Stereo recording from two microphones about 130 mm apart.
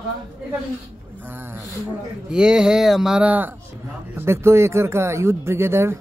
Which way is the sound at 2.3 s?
5° right (ahead or behind).